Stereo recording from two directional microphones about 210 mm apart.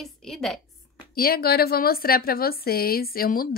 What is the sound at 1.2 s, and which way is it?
A woman's voice, 45° left (ahead or behind).